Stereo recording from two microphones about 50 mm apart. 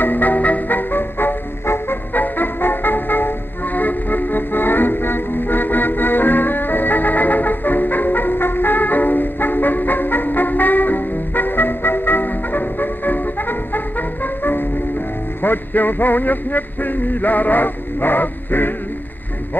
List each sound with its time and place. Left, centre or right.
0.0 s music: left